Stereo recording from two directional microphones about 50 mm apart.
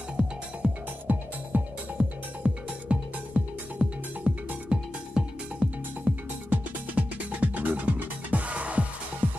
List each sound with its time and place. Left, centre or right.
0.2 s music: centre
1.1 s music: right
6.5 s music: right